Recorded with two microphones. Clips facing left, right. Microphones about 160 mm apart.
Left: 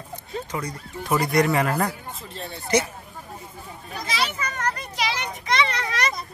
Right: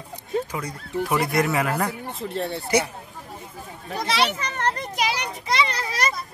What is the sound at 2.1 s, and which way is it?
Speech, 65° right (ahead or behind).